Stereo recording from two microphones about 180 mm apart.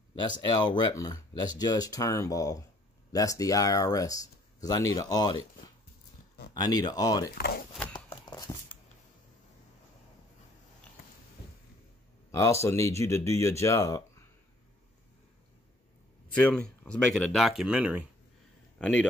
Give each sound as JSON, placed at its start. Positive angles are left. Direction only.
{"t": 0.4, "sound": "speech", "side_deg": 25}
{"t": 6.5, "sound": "speech", "side_deg": 20}
{"t": 7.2, "sound": "speech", "side_deg": 60}
{"t": 7.9, "sound": "a sound", "side_deg": 20}
{"t": 12.3, "sound": "speech", "side_deg": 15}
{"t": 16.4, "sound": "speech", "side_deg": 5}
{"t": 18.8, "sound": "speech", "side_deg": 5}